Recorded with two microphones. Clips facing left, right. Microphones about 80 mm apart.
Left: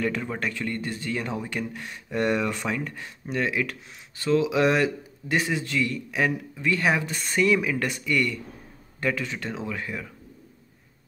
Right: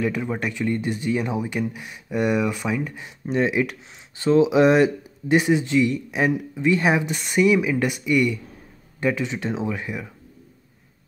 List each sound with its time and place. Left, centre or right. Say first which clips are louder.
0.0 s speech: right 3 dB; centre